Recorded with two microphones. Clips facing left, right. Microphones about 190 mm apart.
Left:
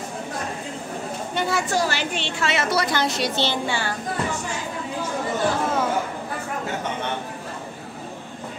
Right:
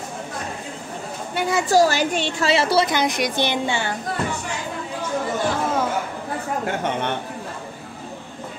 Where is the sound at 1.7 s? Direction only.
40° right (ahead or behind).